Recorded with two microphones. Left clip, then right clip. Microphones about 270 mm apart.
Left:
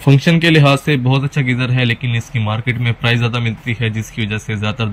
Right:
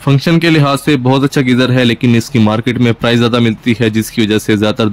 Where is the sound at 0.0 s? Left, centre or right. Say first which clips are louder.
Right 2 dB; centre.